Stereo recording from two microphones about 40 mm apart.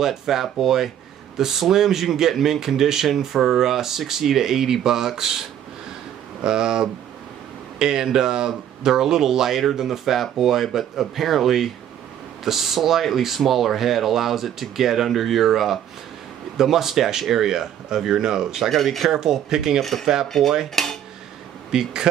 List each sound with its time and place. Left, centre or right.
0.0 s speech: centre
6.4 s speech: centre
18.7 s speech: centre
19.0 s speech: centre
19.8 s speech: centre
20.7 s dishes: centre
21.7 s speech: centre